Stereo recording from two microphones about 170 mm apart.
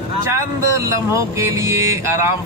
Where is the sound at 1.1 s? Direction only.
20° right (ahead or behind).